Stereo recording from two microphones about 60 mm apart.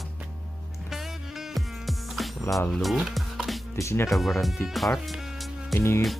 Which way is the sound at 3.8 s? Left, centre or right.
Left.